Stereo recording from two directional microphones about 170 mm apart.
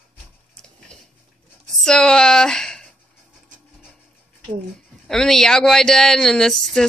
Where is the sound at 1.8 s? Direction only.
5° left (ahead or behind).